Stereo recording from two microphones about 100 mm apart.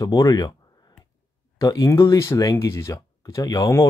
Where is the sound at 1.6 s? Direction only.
40° left (ahead or behind).